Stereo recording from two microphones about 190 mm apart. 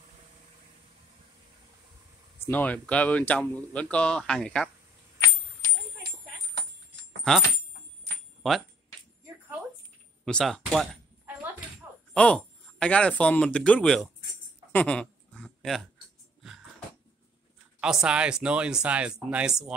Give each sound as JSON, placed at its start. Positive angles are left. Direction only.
{"t": 2.4, "sound": "speech", "side_deg": 10}
{"t": 7.3, "sound": "speech", "side_deg": 5}
{"t": 10.2, "sound": "speech", "side_deg": 5}
{"t": 12.1, "sound": "speech", "side_deg": 5}
{"t": 14.7, "sound": "a sound", "side_deg": 5}
{"t": 17.7, "sound": "speech", "side_deg": -5}